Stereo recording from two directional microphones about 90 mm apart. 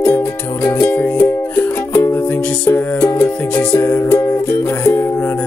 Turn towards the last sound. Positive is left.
turn(degrees=25)  # may be behind; listen again after turning